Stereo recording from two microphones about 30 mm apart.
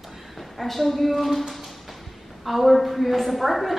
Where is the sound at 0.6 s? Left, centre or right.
Centre.